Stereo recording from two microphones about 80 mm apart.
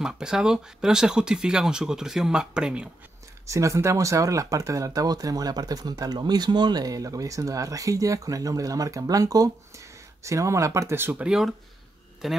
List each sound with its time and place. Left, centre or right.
0.0 s speech: centre
3.4 s speech: right
11.2 s speech: centre